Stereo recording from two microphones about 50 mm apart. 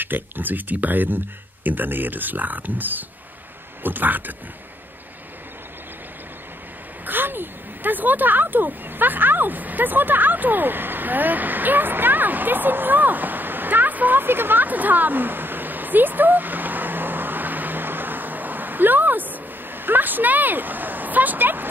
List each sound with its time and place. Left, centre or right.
0.0 s speech: right
7.1 s speech: right